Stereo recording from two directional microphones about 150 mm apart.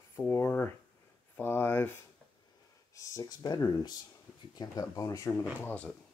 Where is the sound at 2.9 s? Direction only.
25° left (ahead or behind).